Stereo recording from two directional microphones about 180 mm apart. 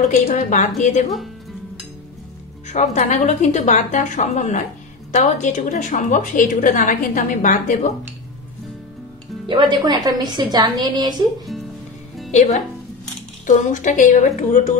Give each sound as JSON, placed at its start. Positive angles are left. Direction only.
{"t": 0.1, "sound": "a woman's voice", "side_deg": 45}
{"t": 2.7, "sound": "a woman's voice", "side_deg": 40}
{"t": 9.5, "sound": "a woman's voice", "side_deg": -25}
{"t": 12.3, "sound": "a woman's voice", "side_deg": 40}